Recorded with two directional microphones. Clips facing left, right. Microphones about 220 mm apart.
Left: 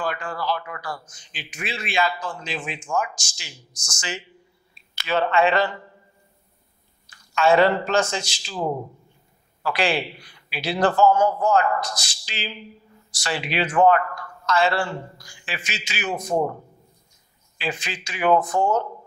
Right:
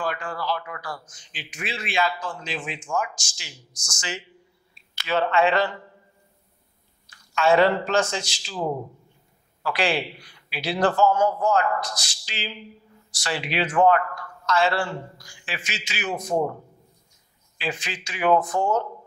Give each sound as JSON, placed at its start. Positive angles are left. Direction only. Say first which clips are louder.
{"t": 0.0, "sound": "a man's voice", "louder": "left 1 dB", "side_deg": 20}
{"t": 5.0, "sound": "a man's voice", "louder": "left 1 dB", "side_deg": 15}
{"t": 7.3, "sound": "a man's voice", "louder": "left 1 dB", "side_deg": 15}
{"t": 8.5, "sound": "a man's voice", "louder": "left 1 dB", "side_deg": 35}
{"t": 9.6, "sound": "a man's voice", "louder": "left 1 dB", "side_deg": 15}
{"t": 11.9, "sound": "a man's voice", "louder": "left 1 dB", "side_deg": 10}
{"t": 16.3, "sound": "a man's voice", "louder": "left 1 dB", "side_deg": 30}
{"t": 17.6, "sound": "a man's voice", "louder": "left 1 dB", "side_deg": 15}
{"t": 18.5, "sound": "speech", "louder": "left 2 dB", "side_deg": 30}